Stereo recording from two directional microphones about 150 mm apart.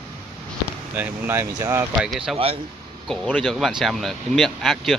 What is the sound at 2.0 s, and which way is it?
Speech, centre (ahead or behind).